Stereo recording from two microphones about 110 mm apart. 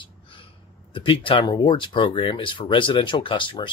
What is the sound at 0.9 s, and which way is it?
Speech, 50° left (ahead or behind).